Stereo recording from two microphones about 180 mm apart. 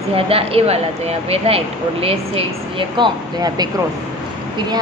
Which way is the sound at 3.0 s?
20° right (ahead or behind).